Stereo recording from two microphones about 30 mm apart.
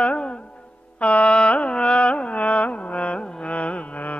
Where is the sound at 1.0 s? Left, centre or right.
Left.